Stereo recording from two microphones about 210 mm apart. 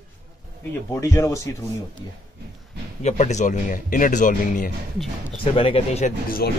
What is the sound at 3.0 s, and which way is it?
Speech, 35° left (ahead or behind).